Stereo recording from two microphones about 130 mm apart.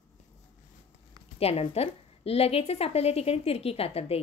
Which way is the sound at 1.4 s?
50° left (ahead or behind).